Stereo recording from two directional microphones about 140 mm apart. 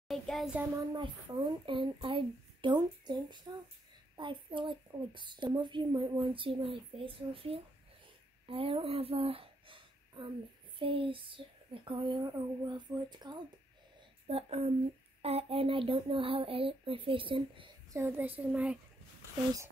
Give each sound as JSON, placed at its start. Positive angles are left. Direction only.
{"t": 0.1, "sound": "a child's voice", "side_deg": 0}
{"t": 0.9, "sound": "a child's voice", "side_deg": -35}
{"t": 14.2, "sound": "a child's voice", "side_deg": -45}
{"t": 17.9, "sound": "a child's voice", "side_deg": -15}